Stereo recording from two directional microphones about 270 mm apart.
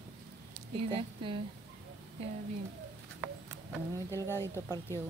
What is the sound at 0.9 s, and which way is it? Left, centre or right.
Speech, centre.